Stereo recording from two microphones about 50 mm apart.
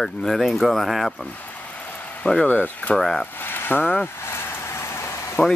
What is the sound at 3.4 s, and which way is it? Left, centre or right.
Speech, left.